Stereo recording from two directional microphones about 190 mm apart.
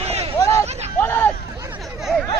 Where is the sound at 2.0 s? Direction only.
Centre (ahead or behind).